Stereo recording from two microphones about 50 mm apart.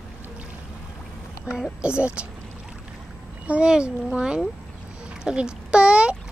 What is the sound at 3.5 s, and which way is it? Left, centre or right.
A child's voice, centre.